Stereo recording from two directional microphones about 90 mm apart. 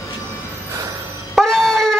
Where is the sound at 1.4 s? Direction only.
5° left (ahead or behind).